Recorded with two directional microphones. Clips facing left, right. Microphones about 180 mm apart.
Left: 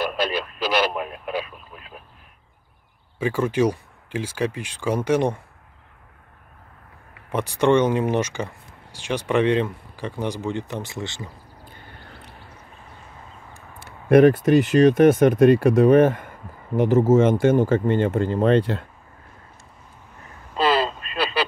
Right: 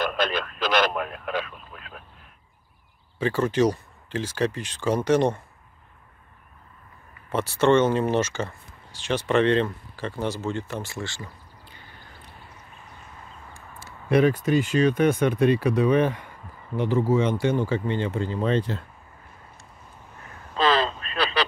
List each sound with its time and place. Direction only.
0.0 s speech: 10° left (ahead or behind)
3.2 s speech: 10° left (ahead or behind)
7.2 s speech: 15° left (ahead or behind)
13.5 s speech: 55° left (ahead or behind)
20.5 s a sound: 10° left (ahead or behind)